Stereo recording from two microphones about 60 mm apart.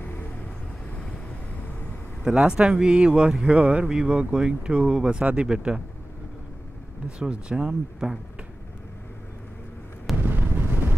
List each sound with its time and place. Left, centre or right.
0.0 s vehicle: left
2.2 s speech: centre
7.1 s speech: centre
10.2 s a sound: right